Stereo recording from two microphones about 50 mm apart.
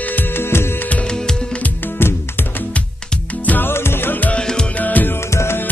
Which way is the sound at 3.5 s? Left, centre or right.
Left.